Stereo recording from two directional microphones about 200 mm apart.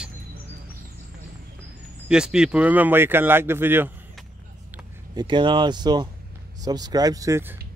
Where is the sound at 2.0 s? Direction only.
5° right (ahead or behind).